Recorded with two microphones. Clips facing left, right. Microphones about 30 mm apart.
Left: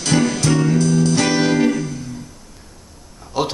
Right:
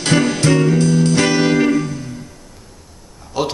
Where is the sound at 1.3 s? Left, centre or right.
Centre.